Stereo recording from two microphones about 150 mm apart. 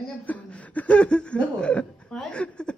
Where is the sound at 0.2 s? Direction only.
10° left (ahead or behind).